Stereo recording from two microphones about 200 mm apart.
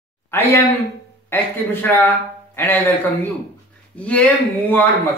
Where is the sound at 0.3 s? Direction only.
10° left (ahead or behind).